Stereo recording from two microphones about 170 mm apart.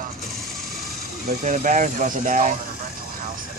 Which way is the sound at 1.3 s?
45° right (ahead or behind).